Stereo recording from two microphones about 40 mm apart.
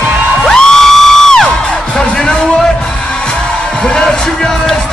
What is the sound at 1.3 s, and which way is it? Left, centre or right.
Music, centre.